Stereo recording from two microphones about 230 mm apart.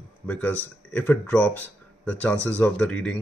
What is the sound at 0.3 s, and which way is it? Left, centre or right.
Speech, centre.